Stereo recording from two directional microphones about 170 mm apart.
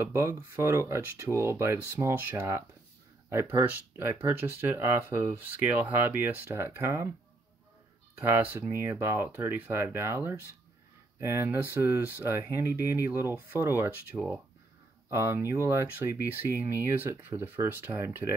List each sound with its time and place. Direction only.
0.0 s speech: 15° right (ahead or behind)
8.2 s speech: 10° right (ahead or behind)